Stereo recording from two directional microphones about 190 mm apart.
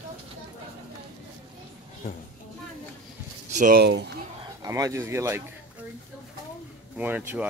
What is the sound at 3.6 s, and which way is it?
Speech, 50° right (ahead or behind).